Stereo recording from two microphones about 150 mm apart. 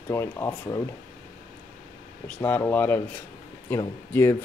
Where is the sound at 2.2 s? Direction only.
10° left (ahead or behind).